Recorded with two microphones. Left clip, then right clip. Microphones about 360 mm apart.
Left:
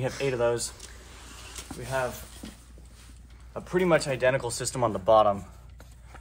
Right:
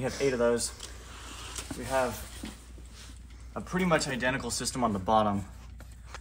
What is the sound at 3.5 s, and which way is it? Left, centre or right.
Speech, left.